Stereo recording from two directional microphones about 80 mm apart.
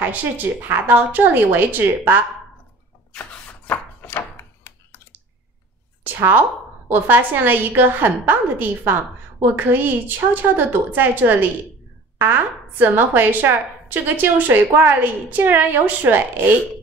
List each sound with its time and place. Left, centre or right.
0.0 s speech: right
3.1 s rub: centre
4.4 s a sound: left
6.0 s a woman's voice: right